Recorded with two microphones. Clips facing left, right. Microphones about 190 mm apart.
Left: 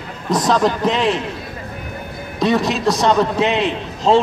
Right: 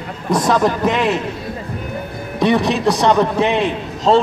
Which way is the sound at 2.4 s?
15° right (ahead or behind).